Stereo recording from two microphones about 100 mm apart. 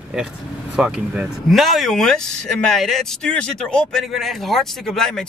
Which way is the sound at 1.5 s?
Centre (ahead or behind).